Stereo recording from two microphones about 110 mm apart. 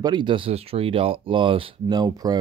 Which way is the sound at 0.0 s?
45° right (ahead or behind).